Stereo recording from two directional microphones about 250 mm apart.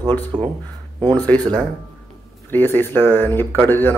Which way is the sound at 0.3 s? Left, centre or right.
Centre.